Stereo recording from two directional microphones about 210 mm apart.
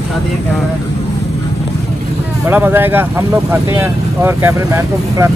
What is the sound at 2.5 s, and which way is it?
Speech, 10° right (ahead or behind).